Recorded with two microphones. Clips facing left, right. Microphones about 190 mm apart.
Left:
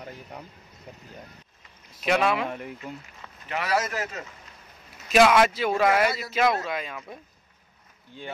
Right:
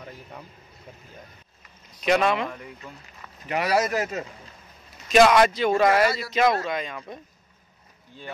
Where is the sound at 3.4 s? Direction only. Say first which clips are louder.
Right 5 dB; 15° right (ahead or behind).